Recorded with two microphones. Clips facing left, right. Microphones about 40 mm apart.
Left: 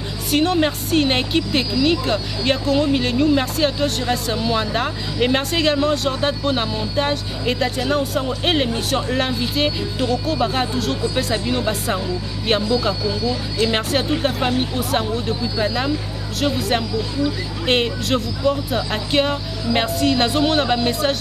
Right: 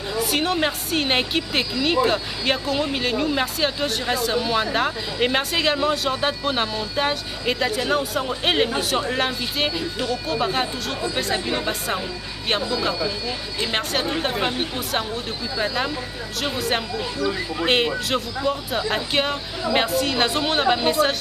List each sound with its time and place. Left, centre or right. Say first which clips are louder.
0.3 s speech: left 6 dB; centre
13.0 s speech: left 4 dB; right
13.7 s speech: left 3 dB; centre